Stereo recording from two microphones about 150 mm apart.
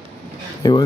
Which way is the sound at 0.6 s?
30° left (ahead or behind).